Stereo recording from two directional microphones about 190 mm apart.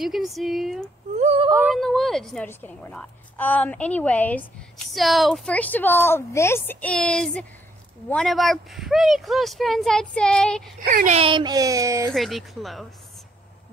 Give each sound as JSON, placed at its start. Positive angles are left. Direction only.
{"t": 0.0, "sound": "speech", "side_deg": 0}
{"t": 1.1, "sound": "a sound", "side_deg": -35}
{"t": 1.5, "sound": "a woman's voice", "side_deg": -10}
{"t": 10.9, "sound": "a child's voice", "side_deg": -45}
{"t": 11.1, "sound": "speech", "side_deg": -25}
{"t": 12.1, "sound": "speech", "side_deg": 0}